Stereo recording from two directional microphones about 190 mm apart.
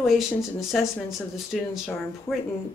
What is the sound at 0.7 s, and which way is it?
Speech, centre (ahead or behind).